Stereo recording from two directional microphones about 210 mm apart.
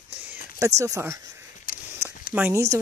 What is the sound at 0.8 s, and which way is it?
Speech, 15° right (ahead or behind).